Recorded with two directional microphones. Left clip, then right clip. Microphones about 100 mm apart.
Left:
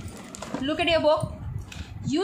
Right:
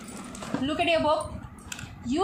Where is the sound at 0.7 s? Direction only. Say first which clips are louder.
Left 2 dB; 25° left (ahead or behind).